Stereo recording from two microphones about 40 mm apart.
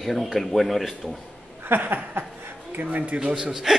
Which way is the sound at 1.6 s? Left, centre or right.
Right.